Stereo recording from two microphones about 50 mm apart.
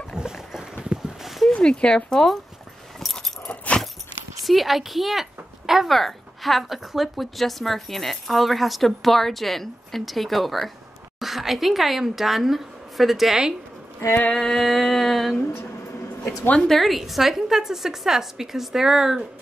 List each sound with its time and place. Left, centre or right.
0.1 s boat: centre
1.2 s a sound: centre
1.5 s speech: centre
3.0 s keys jangling: centre
3.4 s dog: left
4.4 s a woman's voice: centre
14.3 s a sound: centre
16.6 s a woman's voice: centre